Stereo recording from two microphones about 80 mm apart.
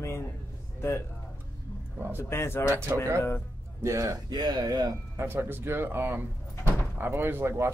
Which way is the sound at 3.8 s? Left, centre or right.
Right.